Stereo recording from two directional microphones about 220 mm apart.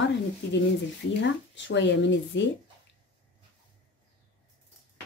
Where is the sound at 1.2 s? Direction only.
55° left (ahead or behind).